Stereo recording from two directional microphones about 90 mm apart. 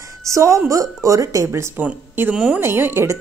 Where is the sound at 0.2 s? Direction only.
35° right (ahead or behind).